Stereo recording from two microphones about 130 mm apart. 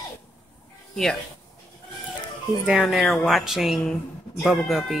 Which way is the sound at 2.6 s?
5° right (ahead or behind).